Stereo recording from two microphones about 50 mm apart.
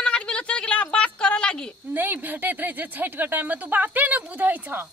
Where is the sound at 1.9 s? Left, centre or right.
Right.